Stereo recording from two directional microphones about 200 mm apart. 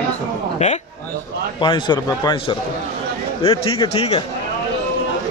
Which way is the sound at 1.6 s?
20° left (ahead or behind).